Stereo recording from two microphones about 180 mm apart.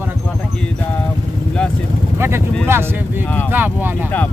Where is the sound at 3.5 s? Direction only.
10° right (ahead or behind).